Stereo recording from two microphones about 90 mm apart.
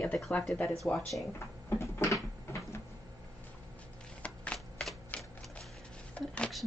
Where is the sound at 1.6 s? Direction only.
30° left (ahead or behind).